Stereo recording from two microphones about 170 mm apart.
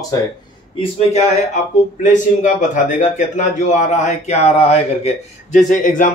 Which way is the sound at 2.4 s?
50° left (ahead or behind).